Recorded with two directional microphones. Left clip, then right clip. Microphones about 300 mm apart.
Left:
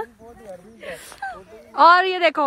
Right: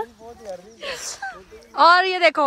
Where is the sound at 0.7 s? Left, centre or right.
Right.